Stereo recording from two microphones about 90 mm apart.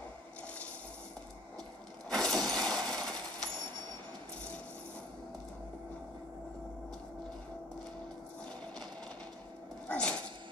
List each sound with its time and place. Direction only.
2.0 s shatter: 5° left (ahead or behind)
9.8 s dog: 10° left (ahead or behind)